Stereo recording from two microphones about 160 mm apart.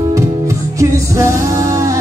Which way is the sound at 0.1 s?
20° right (ahead or behind).